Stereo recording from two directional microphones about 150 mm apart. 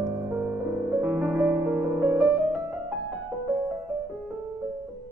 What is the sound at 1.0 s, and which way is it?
Music, 10° right (ahead or behind).